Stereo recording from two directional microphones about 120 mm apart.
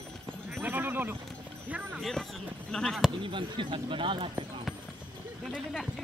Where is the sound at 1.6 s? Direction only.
15° right (ahead or behind).